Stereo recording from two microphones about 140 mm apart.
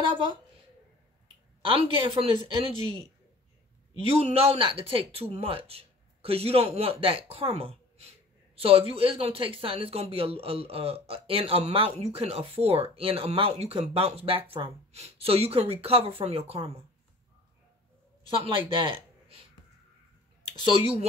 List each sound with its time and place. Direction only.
0.0 s a woman's voice: 35° right (ahead or behind)
1.6 s speech: 40° right (ahead or behind)
4.0 s a man's voice: 45° right (ahead or behind)
18.4 s speech: 35° right (ahead or behind)
20.4 s speech: 40° right (ahead or behind)